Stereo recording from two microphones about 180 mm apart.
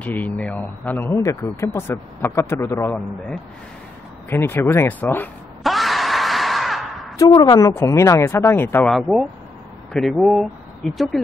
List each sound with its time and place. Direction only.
0.0 s speech: 10° left (ahead or behind)
4.3 s a sound: 15° left (ahead or behind)
7.2 s speech: 25° left (ahead or behind)
8.9 s speech: centre (ahead or behind)